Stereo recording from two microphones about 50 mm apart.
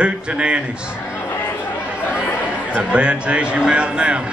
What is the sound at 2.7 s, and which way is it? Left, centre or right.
A man's voice, right.